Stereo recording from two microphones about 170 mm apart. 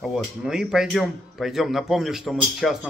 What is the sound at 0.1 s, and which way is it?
Speech, 5° right (ahead or behind).